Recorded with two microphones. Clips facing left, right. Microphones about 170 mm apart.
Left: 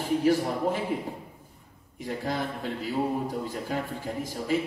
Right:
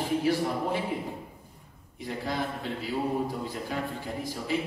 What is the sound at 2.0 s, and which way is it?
A man's voice, 45° left (ahead or behind).